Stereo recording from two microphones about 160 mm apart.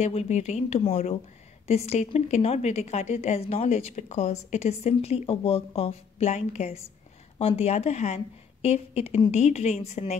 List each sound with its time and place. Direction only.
0.0 s a woman's voice: 40° left (ahead or behind)